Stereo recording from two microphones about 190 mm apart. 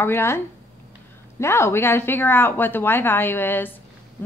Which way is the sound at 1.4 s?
15° left (ahead or behind).